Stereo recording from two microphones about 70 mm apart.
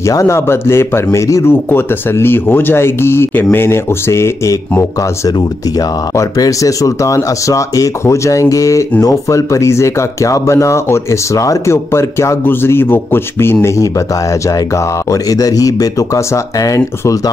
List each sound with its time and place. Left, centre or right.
0.0 s speech: left
1.5 s speech: left
6.1 s speech: left
11.7 s speech: left